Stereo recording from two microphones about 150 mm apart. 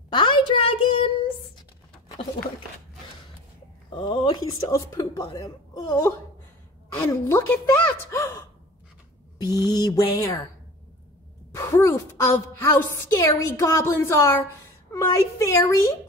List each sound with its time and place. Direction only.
0.1 s a sound: 30° left (ahead or behind)
3.9 s speech: 35° left (ahead or behind)
7.0 s a woman's voice: 15° left (ahead or behind)
11.5 s a woman's voice: 15° left (ahead or behind)